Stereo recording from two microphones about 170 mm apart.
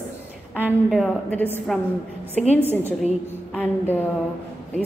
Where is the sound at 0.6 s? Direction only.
Centre (ahead or behind).